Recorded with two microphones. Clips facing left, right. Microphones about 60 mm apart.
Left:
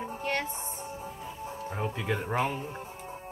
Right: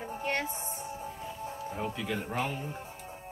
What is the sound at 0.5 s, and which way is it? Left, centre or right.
Music, left.